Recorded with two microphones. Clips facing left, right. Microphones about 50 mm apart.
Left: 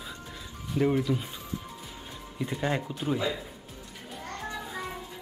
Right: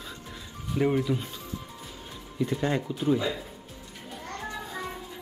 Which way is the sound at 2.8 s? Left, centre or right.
Centre.